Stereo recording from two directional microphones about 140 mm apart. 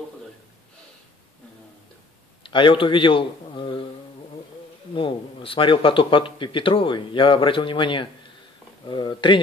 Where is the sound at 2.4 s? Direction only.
35° left (ahead or behind).